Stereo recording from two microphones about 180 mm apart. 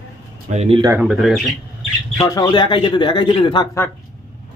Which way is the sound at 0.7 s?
20° right (ahead or behind).